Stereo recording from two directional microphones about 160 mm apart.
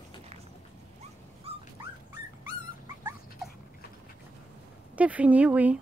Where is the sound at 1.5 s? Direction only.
40° right (ahead or behind).